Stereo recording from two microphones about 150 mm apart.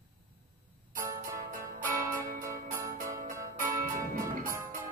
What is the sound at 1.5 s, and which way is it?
Music, 65° right (ahead or behind).